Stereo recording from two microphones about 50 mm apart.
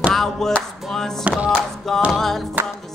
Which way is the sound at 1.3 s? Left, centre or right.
Right.